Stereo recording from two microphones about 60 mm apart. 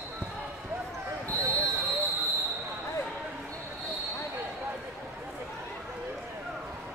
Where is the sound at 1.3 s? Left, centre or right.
Right.